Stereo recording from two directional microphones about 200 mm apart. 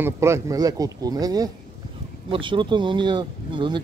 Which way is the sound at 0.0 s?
15° right (ahead or behind).